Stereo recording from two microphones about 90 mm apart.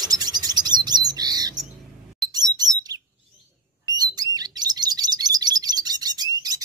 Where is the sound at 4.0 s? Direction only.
45° right (ahead or behind).